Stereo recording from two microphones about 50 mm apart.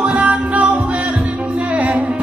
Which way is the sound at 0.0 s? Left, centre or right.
Right.